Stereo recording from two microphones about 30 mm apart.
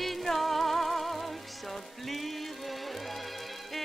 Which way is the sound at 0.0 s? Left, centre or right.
Centre.